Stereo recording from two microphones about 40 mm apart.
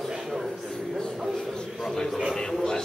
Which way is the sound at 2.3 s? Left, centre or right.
Centre.